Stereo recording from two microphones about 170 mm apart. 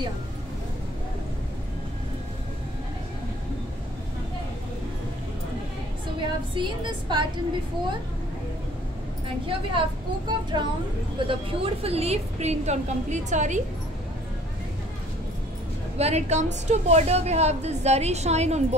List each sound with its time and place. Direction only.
6.5 s a woman's voice: 25° right (ahead or behind)
9.5 s a woman's voice: 30° right (ahead or behind); by 13.6 s 45° right (ahead or behind)
16.0 s a woman's voice: 40° right (ahead or behind)